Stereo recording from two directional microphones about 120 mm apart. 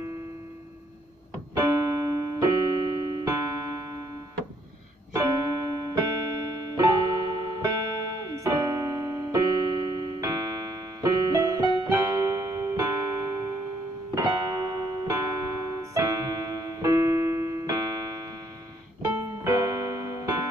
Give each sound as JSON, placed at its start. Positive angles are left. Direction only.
{"t": 1.5, "sound": "keyboard", "side_deg": -30}
{"t": 5.1, "sound": "keyboard", "side_deg": -30}
{"t": 6.7, "sound": "music", "side_deg": -30}
{"t": 19.0, "sound": "keyboard", "side_deg": -30}